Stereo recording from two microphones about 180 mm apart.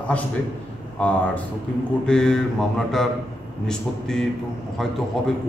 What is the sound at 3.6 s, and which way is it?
A man's voice, 5° left (ahead or behind).